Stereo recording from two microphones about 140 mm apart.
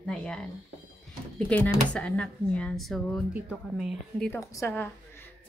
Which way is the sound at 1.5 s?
10° left (ahead or behind).